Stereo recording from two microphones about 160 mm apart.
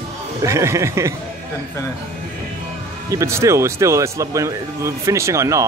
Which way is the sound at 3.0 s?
20° right (ahead or behind).